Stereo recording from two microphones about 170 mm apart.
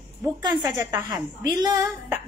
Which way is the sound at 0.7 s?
20° right (ahead or behind).